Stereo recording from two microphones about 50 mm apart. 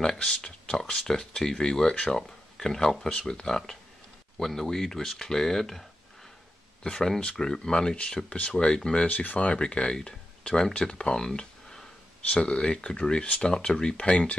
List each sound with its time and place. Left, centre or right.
0.2 s speech: centre
9.0 s speech: left